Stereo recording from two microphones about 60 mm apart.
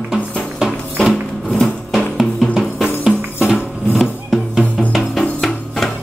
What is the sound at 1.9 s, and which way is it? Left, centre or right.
Music, centre.